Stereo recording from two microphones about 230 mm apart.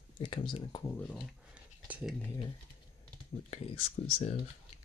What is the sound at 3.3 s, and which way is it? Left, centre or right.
Speech, left.